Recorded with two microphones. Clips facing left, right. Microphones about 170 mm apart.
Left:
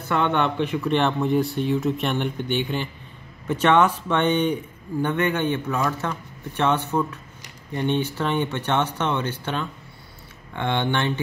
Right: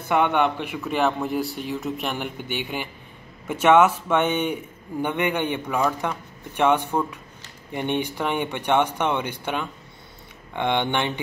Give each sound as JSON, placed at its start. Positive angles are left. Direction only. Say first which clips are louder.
{"t": 0.1, "sound": "speech", "louder": "right 1 dB", "side_deg": -10}